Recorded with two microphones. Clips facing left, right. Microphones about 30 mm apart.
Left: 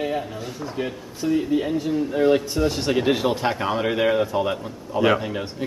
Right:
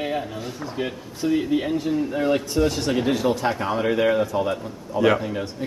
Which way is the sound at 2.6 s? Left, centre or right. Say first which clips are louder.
Left 1 dB; centre.